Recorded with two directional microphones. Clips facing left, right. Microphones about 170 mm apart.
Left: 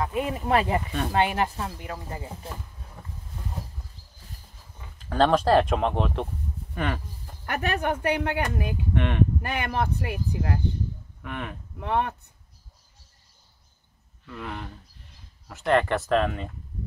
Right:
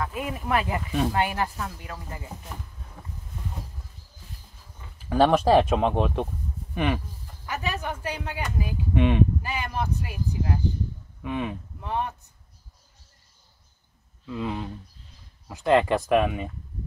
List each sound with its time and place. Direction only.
0.0 s speech: 25° left (ahead or behind)
4.9 s speech: 10° right (ahead or behind)
7.4 s speech: 60° left (ahead or behind)
8.9 s speech: 10° right (ahead or behind)
9.4 s speech: 60° left (ahead or behind)
11.2 s speech: 15° right (ahead or behind)
11.8 s speech: 65° left (ahead or behind)
14.2 s speech: 15° right (ahead or behind)